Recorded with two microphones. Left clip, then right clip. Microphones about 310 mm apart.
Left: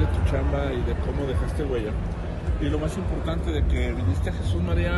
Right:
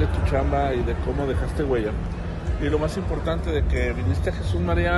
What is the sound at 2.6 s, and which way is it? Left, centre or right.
A man's voice, right.